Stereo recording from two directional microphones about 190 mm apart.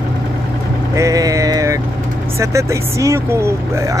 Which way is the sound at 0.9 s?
15° right (ahead or behind).